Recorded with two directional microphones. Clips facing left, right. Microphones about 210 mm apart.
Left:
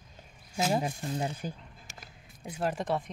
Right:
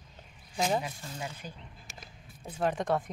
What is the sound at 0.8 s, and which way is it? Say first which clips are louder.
Speech: left 7 dB; 45° left (ahead or behind).